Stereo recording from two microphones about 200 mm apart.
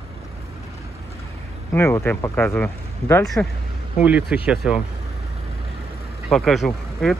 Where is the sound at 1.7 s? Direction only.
10° left (ahead or behind).